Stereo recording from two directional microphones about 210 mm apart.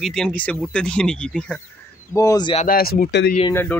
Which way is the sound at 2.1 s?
15° left (ahead or behind).